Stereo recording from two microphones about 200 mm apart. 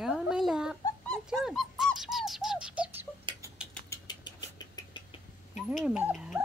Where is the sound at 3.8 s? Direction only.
20° left (ahead or behind).